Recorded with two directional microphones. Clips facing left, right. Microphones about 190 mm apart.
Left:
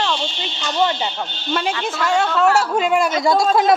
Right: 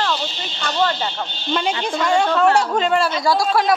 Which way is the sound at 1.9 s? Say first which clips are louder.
Right 2 dB; centre (ahead or behind).